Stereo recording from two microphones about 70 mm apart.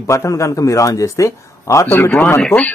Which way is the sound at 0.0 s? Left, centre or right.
Left.